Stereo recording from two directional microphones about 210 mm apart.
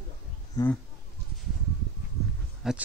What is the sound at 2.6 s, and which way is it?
Speech, centre (ahead or behind).